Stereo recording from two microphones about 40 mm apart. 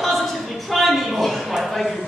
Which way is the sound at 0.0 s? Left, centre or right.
Centre.